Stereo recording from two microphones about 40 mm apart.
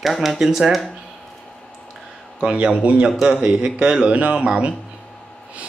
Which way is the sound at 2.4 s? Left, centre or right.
Right.